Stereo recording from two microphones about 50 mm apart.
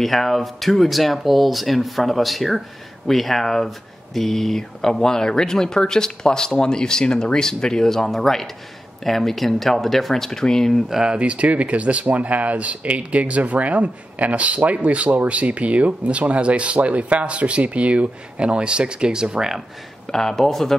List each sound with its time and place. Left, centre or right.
0.0 s speech: centre
10.9 s speech: centre
20.1 s speech: centre